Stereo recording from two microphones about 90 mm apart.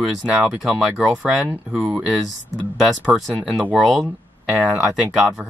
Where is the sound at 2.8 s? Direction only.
Centre (ahead or behind).